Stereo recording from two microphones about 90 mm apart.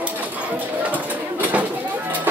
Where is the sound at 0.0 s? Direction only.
15° right (ahead or behind).